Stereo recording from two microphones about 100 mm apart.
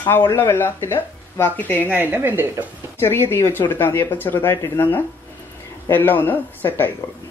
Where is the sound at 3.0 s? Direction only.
25° left (ahead or behind).